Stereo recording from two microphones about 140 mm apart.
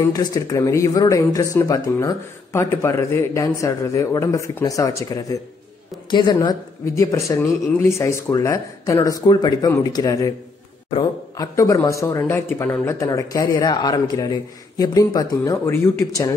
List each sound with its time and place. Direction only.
0.0 s speech: 25° left (ahead or behind)
11.3 s speech: 25° left (ahead or behind)